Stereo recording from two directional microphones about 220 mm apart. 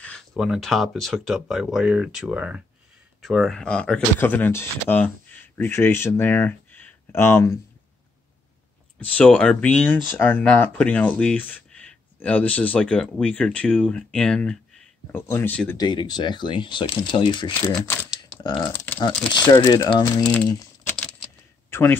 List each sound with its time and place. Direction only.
0.0 s speech: centre (ahead or behind)
9.0 s speech: 5° left (ahead or behind)
15.8 s speech: 20° left (ahead or behind)
17.7 s camera: 5° left (ahead or behind)
18.4 s speech: 20° left (ahead or behind)